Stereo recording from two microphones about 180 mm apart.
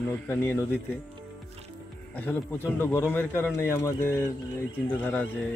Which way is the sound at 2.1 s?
10° left (ahead or behind).